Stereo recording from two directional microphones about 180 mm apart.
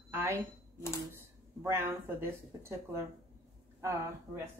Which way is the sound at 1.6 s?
15° right (ahead or behind).